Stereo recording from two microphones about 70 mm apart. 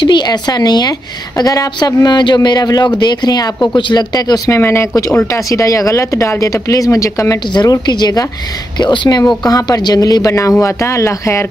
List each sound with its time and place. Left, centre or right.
0.2 s a woman's voice: left
4.5 s speech: left
7.5 s a woman's voice: left
8.7 s speech: left
9.4 s speech: left